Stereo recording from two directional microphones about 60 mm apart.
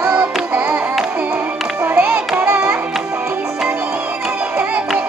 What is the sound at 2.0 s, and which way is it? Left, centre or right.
Music, right.